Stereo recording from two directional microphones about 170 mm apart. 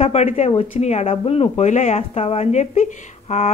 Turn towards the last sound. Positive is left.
turn(degrees=40)  # may be behind; listen again after turning